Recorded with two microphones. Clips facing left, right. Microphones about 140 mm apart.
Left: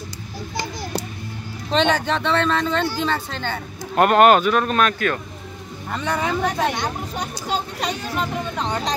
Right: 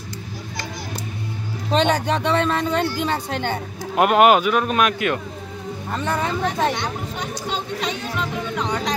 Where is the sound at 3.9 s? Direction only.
5° right (ahead or behind).